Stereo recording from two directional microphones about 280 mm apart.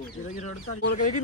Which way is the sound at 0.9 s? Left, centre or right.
Left.